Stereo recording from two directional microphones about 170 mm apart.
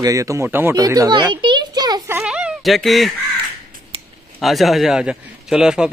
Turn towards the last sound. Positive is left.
turn(degrees=-5)  # may be behind; listen again after turning